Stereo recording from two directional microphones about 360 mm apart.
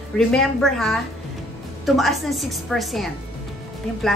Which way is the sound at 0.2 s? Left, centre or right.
Centre.